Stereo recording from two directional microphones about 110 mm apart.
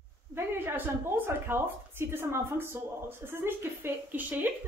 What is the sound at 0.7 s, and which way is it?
A woman's voice, 20° right (ahead or behind).